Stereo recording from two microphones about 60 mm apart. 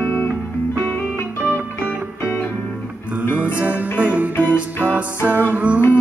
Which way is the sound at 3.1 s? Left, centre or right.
Right.